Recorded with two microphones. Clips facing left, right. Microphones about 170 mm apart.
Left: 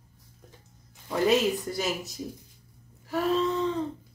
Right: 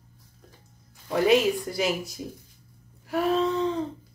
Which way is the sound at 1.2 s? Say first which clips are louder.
Right 3 dB; 5° right (ahead or behind).